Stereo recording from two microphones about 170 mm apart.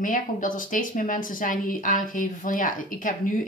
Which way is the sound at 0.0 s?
50° left (ahead or behind).